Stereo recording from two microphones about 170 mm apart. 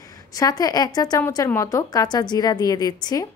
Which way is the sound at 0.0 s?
20° left (ahead or behind).